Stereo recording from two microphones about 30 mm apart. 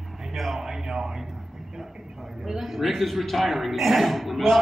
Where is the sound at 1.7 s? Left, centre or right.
Centre.